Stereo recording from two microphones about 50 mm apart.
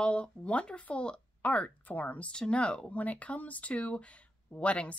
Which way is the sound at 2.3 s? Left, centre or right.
Centre.